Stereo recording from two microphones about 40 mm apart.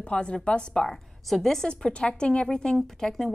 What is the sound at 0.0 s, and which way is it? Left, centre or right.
Speech, left.